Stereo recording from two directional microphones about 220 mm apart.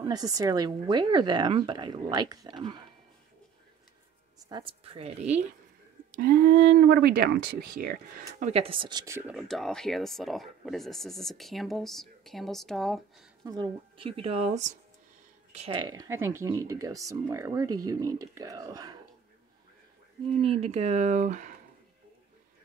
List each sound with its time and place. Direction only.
0.0 s speech: 15° right (ahead or behind)
4.5 s speech: 20° right (ahead or behind)
6.1 s speech: 45° right (ahead or behind); by 9.2 s 15° right (ahead or behind)
9.3 s speech: centre (ahead or behind)
13.4 s speech: 15° right (ahead or behind)
20.4 s speech: 25° right (ahead or behind)